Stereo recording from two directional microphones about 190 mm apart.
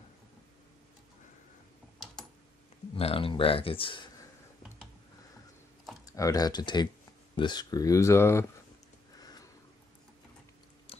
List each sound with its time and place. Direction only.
2.9 s speech: 30° left (ahead or behind)
6.0 s speech: 15° left (ahead or behind)
10.9 s a sound: 30° left (ahead or behind)